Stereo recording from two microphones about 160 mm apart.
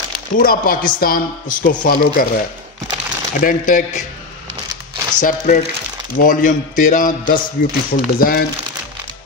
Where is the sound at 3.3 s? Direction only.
60° left (ahead or behind).